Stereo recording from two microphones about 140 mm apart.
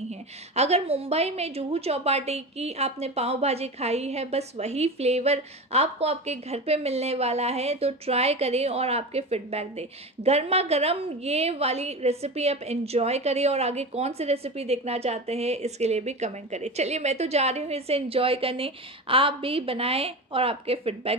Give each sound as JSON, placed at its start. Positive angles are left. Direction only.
{"t": 0.6, "sound": "a woman's voice", "side_deg": -50}